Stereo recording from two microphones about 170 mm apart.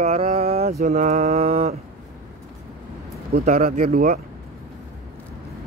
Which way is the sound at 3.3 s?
45° right (ahead or behind).